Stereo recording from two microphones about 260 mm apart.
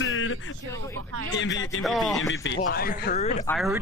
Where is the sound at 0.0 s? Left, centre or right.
Left.